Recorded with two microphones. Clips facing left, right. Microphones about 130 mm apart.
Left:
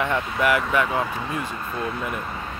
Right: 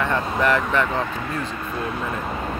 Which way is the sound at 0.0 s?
10° left (ahead or behind).